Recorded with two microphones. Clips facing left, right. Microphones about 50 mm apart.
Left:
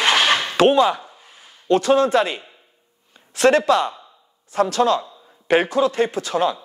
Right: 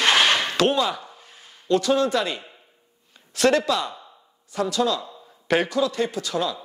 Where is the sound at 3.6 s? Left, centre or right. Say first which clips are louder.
Left 7 dB; left.